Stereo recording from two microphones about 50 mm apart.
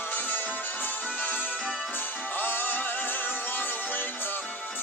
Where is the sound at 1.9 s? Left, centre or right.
Left.